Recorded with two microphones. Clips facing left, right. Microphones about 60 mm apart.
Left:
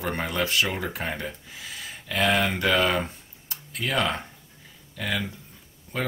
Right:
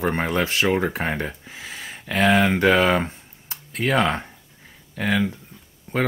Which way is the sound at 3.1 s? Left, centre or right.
Right.